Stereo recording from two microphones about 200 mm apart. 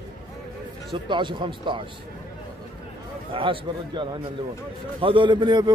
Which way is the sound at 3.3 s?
25° right (ahead or behind).